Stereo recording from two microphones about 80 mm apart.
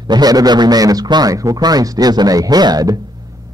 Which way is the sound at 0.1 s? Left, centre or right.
Right.